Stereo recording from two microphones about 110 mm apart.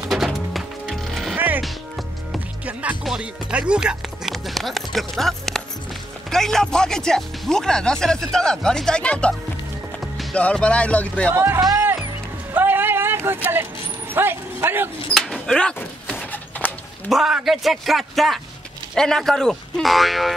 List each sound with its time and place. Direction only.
0.1 s music: centre (ahead or behind)
1.3 s music: 15° right (ahead or behind)
2.6 s music: 15° right (ahead or behind)
3.0 s speech: 5° right (ahead or behind); by 11.3 s 10° left (ahead or behind)
11.3 s speech: 20° right (ahead or behind)
12.5 s vehicle: 20° right (ahead or behind)
14.1 s speech: 20° right (ahead or behind)
15.1 s a sound: 5° left (ahead or behind)
17.1 s speech: 5° right (ahead or behind)